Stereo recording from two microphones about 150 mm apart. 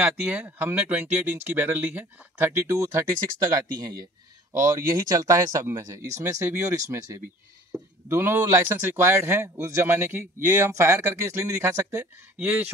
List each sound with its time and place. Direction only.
0.0 s a man's voice: 10° right (ahead or behind)